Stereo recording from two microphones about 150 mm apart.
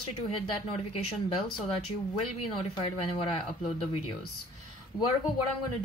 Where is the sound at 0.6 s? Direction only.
40° left (ahead or behind).